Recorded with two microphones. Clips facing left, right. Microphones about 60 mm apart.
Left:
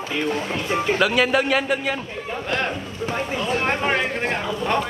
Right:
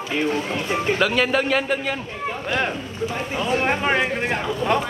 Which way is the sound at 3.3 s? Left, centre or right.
Right.